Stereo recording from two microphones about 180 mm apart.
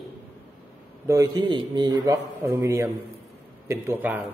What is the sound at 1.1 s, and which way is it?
A man's voice, 20° right (ahead or behind).